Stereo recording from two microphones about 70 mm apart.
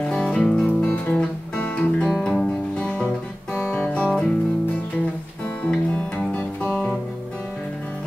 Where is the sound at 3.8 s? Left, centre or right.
Centre.